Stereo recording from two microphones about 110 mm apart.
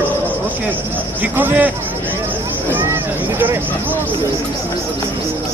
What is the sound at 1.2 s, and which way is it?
Speech, 15° right (ahead or behind).